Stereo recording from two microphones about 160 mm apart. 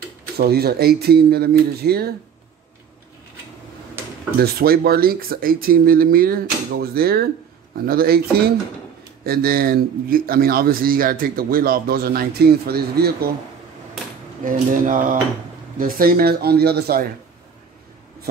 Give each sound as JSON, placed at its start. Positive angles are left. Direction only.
{"t": 0.4, "sound": "a man's voice", "side_deg": -75}
{"t": 4.4, "sound": "a man's voice", "side_deg": -75}
{"t": 14.4, "sound": "speech", "side_deg": -55}
{"t": 16.0, "sound": "a man's voice", "side_deg": -65}